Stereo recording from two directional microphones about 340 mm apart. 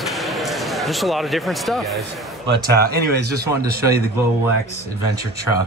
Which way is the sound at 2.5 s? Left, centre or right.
Right.